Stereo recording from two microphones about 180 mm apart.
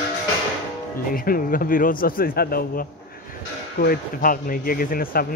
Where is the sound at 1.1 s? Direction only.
50° left (ahead or behind).